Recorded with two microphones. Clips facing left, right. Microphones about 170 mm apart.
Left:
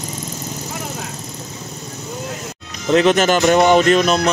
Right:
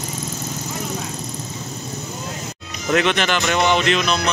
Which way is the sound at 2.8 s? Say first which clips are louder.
Left 5 dB; 35° left (ahead or behind).